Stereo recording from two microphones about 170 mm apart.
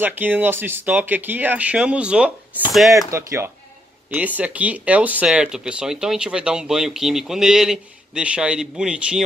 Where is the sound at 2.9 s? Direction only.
15° right (ahead or behind).